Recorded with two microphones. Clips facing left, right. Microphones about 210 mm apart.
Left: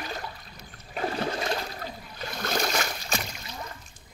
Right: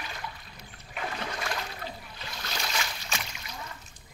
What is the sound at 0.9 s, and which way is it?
Toilet flush, 35° left (ahead or behind).